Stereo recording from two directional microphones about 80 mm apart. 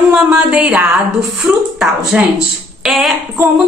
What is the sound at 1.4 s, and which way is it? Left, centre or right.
A woman's voice, centre.